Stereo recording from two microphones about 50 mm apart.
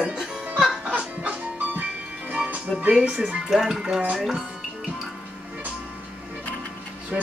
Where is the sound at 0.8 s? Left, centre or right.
Right.